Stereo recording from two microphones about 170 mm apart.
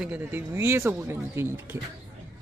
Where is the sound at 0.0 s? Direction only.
10° right (ahead or behind).